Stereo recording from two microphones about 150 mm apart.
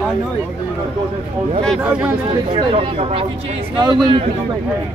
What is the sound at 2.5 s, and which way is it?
Speech, 40° right (ahead or behind).